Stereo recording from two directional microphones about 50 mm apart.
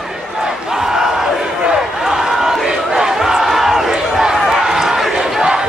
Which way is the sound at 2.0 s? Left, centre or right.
Centre.